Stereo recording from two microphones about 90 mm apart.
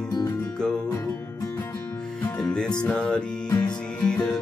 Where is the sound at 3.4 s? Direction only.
45° left (ahead or behind).